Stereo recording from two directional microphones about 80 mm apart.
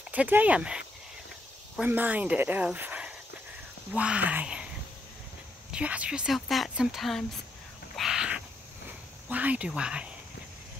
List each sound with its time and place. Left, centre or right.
0.1 s speech: centre
1.9 s speech: right
5.7 s speech: centre
6.3 s speech: centre
7.9 s a sound: centre
9.3 s speech: centre